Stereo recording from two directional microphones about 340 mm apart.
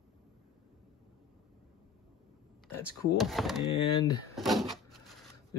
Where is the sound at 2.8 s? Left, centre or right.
Centre.